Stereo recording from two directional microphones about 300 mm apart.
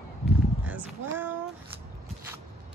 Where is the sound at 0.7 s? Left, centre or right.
Centre.